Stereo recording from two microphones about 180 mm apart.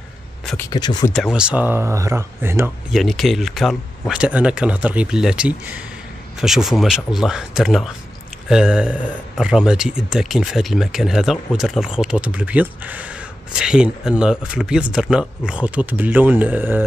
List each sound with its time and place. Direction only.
0.7 s speech: 25° left (ahead or behind)
1.1 s speech: 5° right (ahead or behind)
2.9 s speech: centre (ahead or behind)